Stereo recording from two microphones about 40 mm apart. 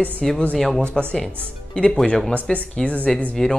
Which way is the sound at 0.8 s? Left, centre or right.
Centre.